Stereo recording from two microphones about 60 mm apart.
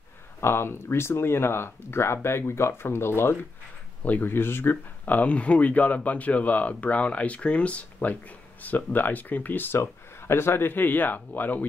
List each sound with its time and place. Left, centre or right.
0.4 s speech: left
4.0 s speech: left